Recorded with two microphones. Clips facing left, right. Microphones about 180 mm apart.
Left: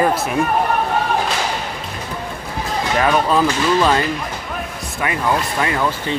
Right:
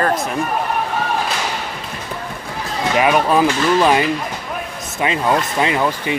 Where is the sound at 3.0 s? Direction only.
10° right (ahead or behind).